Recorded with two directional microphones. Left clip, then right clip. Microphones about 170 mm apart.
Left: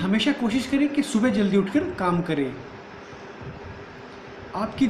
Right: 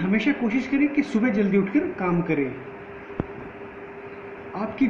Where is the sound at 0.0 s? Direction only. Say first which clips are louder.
Even; 15° left (ahead or behind).